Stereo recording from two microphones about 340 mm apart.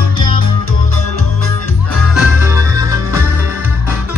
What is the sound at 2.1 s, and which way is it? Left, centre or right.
Music, centre.